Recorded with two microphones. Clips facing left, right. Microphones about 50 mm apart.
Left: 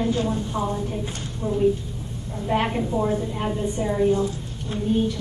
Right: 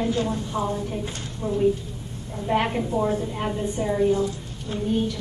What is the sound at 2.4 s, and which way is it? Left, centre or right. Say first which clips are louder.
A woman's voice: even; centre.